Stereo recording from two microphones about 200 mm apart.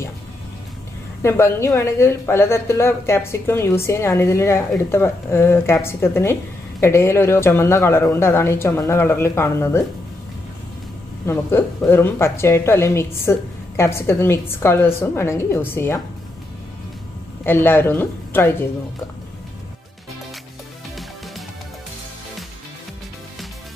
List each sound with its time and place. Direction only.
1.2 s a woman's voice: 15° left (ahead or behind)
11.2 s a woman's voice: 10° left (ahead or behind)
17.5 s a woman's voice: 10° left (ahead or behind)